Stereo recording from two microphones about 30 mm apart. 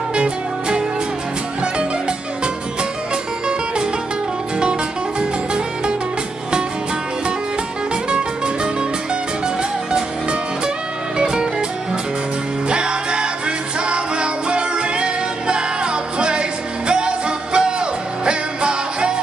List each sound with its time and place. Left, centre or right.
0.1 s music: right
5.2 s music: right
7.9 s music: right
9.6 s music: right
11.1 s music: right
12.6 s music: right